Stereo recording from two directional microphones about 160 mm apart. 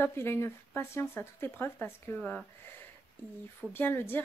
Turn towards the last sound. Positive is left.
turn(degrees=15)  # may be behind; listen again after turning